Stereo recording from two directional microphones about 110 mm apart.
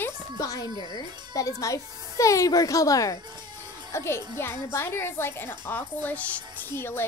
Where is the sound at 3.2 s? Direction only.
40° right (ahead or behind).